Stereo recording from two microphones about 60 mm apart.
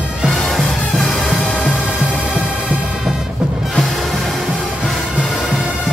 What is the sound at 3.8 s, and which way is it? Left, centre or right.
Music, centre.